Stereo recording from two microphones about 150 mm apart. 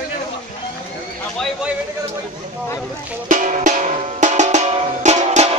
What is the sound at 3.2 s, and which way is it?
Drum, 55° right (ahead or behind).